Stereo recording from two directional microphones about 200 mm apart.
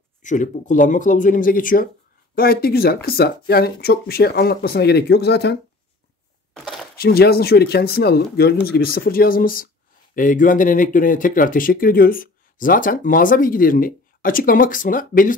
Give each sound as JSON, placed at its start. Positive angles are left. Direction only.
{"t": 0.2, "sound": "speech", "side_deg": 40}
{"t": 6.5, "sound": "a sound", "side_deg": 0}
{"t": 7.0, "sound": "speech", "side_deg": 50}